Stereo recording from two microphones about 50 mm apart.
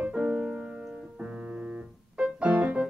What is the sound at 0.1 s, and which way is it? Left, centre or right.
Music, centre.